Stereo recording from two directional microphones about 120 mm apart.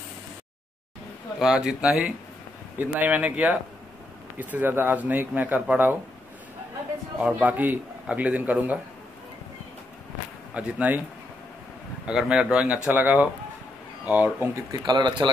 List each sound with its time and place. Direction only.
1.4 s speech: 5° right (ahead or behind)
7.2 s speech: 10° right (ahead or behind)
10.5 s speech: 10° right (ahead or behind)
12.1 s speech: 5° right (ahead or behind)
14.7 s speech: 35° right (ahead or behind)